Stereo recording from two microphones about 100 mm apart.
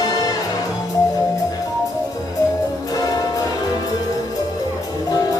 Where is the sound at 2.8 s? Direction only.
35° left (ahead or behind).